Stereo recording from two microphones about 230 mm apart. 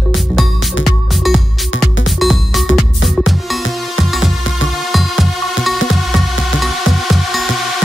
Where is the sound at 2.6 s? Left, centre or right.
Left.